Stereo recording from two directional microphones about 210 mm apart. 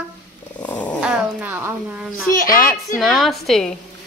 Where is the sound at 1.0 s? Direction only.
5° right (ahead or behind).